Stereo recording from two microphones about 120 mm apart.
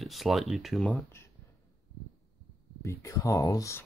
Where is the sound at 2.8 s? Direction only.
25° left (ahead or behind).